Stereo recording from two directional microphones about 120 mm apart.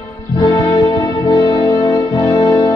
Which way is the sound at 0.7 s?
40° left (ahead or behind).